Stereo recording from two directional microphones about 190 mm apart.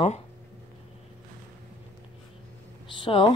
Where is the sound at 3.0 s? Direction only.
25° left (ahead or behind).